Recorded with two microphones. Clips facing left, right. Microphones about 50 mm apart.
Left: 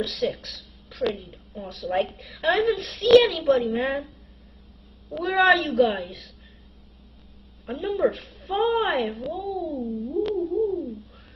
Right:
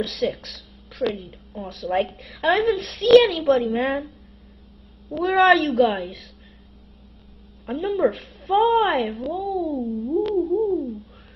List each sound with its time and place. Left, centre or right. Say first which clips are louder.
0.0 s a woman's voice: right 2 dB; centre
5.1 s a woman's voice: right 3 dB; centre
7.6 s speech: right 2 dB; centre